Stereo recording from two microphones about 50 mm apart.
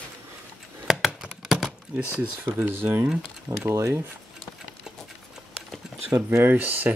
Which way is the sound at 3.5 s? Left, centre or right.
Right.